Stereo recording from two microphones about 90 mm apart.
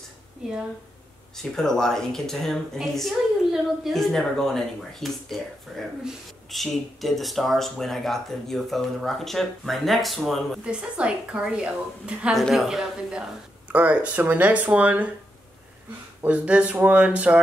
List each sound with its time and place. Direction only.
1.3 s speech: 5° left (ahead or behind)
10.6 s a woman's voice: 10° right (ahead or behind)
12.4 s speech: centre (ahead or behind)
13.7 s a woman's voice: 15° right (ahead or behind)
16.2 s a woman's voice: 15° right (ahead or behind)